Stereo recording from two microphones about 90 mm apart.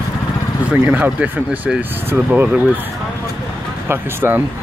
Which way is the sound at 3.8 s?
25° right (ahead or behind).